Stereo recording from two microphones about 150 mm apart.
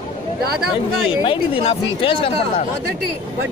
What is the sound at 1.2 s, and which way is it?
Speech, 35° left (ahead or behind).